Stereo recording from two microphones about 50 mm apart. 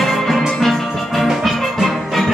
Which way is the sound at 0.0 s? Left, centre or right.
Centre.